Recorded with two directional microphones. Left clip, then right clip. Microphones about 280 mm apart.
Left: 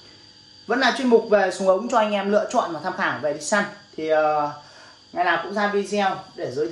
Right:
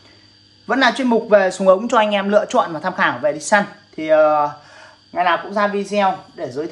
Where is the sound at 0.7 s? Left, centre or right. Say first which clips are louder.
Right 3 dB; centre.